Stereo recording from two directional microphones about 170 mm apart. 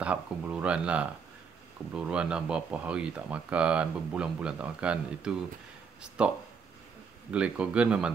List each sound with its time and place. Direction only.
0.0 s speech: 10° right (ahead or behind)